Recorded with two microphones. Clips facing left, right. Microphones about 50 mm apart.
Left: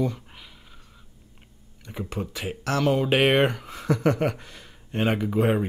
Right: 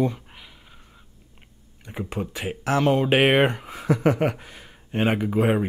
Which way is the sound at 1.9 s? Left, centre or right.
Centre.